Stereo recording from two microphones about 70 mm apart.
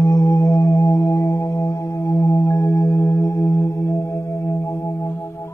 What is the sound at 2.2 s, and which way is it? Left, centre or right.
Singing bowl, left.